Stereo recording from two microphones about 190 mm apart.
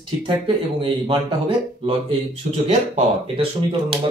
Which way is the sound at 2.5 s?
35° right (ahead or behind).